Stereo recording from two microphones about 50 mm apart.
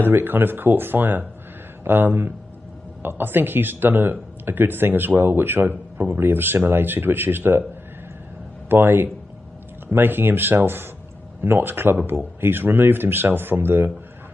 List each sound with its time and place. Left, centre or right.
0.0 s speech: right
8.6 s speech: right